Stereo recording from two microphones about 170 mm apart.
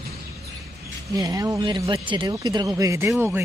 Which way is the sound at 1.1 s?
20° right (ahead or behind).